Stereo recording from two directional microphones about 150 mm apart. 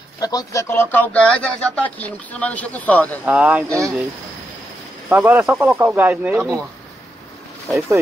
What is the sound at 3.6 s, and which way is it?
Speech, 20° right (ahead or behind).